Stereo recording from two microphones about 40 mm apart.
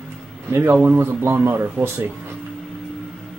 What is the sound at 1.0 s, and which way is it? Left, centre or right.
Speech, right.